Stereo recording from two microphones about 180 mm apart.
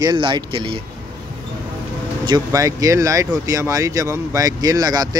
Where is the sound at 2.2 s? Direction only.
20° right (ahead or behind).